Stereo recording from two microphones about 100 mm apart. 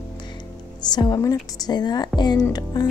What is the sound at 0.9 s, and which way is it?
Speech, 45° left (ahead or behind).